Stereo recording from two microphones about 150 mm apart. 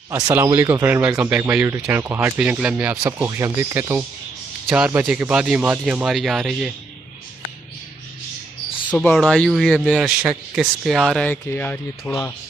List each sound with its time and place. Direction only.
0.1 s speech: 15° right (ahead or behind)
8.9 s speech: 5° left (ahead or behind)
9.8 s speech: 5° right (ahead or behind); by 12.2 s 15° left (ahead or behind)